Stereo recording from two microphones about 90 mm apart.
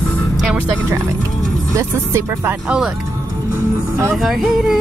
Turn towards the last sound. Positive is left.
turn(degrees=0)  # may be behind; listen again after turning